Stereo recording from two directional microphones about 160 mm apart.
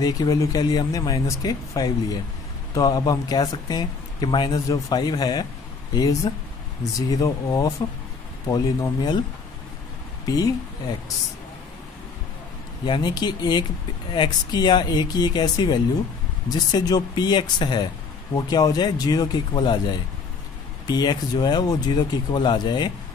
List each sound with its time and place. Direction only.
0.0 s speech: 25° left (ahead or behind)
10.2 s speech: 25° left (ahead or behind)
12.8 s speech: 30° left (ahead or behind)
20.8 s speech: 25° left (ahead or behind)